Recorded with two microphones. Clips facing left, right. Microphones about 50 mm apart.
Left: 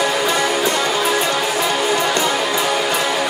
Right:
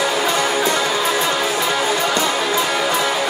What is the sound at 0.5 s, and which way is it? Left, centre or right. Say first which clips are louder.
Music: even; left.